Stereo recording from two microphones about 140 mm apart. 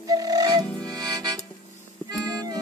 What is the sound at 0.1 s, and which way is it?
Music, 25° right (ahead or behind).